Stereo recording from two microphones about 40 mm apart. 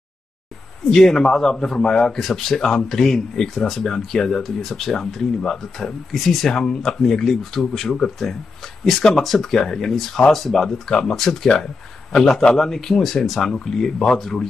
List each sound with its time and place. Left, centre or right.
0.8 s a man's voice: centre
6.5 s speech: centre